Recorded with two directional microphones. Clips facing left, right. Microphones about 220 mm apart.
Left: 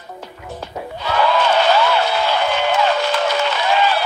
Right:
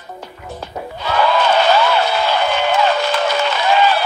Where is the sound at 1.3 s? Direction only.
45° right (ahead or behind).